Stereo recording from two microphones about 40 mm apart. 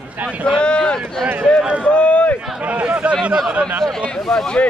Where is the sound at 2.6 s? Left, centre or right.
Right.